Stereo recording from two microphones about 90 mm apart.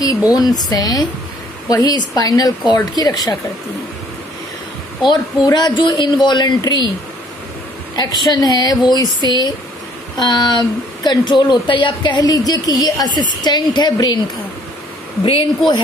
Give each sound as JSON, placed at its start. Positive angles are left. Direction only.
{"t": 0.0, "sound": "speech", "side_deg": 45}
{"t": 5.0, "sound": "speech", "side_deg": 55}
{"t": 7.9, "sound": "a woman's voice", "side_deg": 50}